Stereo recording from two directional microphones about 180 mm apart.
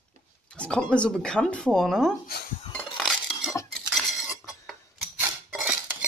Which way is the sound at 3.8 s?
5° right (ahead or behind).